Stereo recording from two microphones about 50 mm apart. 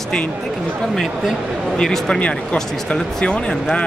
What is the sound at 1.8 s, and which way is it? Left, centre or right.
Speech, centre.